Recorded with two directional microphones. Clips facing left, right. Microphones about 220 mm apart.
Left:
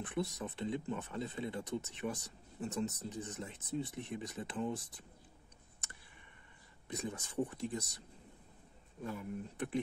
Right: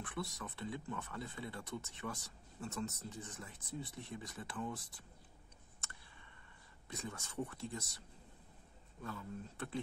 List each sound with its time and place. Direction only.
0.0 s speech: 20° left (ahead or behind)
6.9 s speech: 20° left (ahead or behind)
9.0 s speech: 20° left (ahead or behind)